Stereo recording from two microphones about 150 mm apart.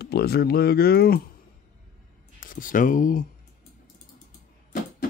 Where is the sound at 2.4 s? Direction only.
65° left (ahead or behind).